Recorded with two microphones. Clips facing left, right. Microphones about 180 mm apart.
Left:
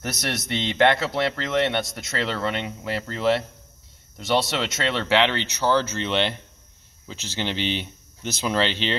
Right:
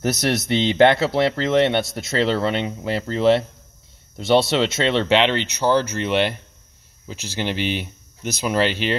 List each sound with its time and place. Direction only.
0.0 s speech: 35° right (ahead or behind); by 8.9 s 10° right (ahead or behind)